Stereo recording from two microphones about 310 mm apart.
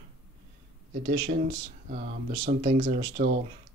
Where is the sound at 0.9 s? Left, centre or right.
Right.